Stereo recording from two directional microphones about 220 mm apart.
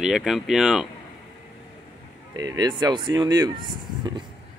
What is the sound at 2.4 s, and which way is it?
Speech, 15° right (ahead or behind).